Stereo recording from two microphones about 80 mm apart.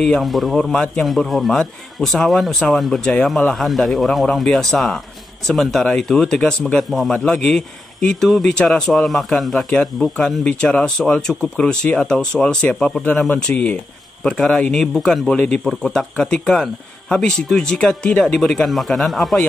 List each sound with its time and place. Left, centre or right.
0.0 s speech: centre